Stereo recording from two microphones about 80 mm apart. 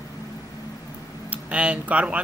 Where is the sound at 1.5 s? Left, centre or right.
Centre.